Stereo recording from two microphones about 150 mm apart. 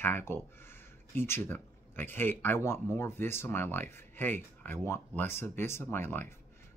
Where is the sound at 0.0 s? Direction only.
15° left (ahead or behind).